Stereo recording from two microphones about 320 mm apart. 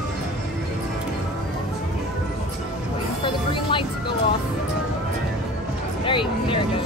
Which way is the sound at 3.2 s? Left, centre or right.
Centre.